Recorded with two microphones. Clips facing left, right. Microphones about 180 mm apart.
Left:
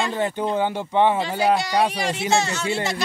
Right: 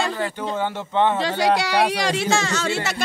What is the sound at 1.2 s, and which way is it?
Speech, 90° right.